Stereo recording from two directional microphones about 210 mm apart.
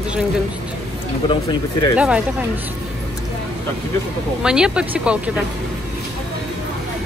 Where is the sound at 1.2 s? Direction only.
25° left (ahead or behind).